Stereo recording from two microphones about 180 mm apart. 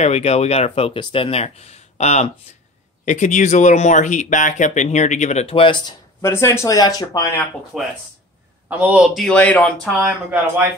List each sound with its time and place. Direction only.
0.0 s speech: 35° left (ahead or behind)
6.2 s speech: 15° left (ahead or behind)
7.7 s speech: centre (ahead or behind)
10.0 s speech: 10° right (ahead or behind)